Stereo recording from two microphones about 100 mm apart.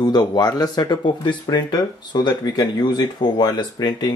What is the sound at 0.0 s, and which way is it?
Speech, 45° left (ahead or behind).